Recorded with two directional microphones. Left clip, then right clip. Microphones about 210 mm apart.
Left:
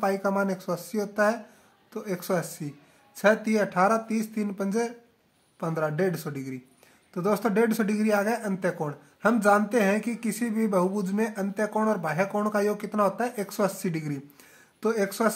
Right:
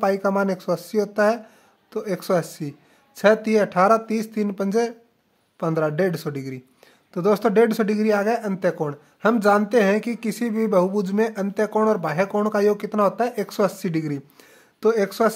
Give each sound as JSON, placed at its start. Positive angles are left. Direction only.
{"t": 0.0, "sound": "speech", "side_deg": -40}